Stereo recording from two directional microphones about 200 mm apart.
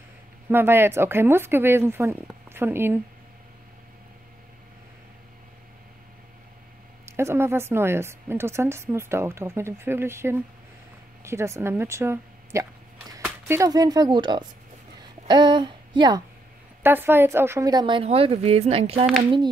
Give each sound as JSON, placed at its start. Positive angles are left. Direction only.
{"t": 0.5, "sound": "a woman's voice", "side_deg": -10}
{"t": 7.1, "sound": "a woman's voice", "side_deg": -15}
{"t": 15.0, "sound": "a sound", "side_deg": -20}
{"t": 16.8, "sound": "a woman's voice", "side_deg": -10}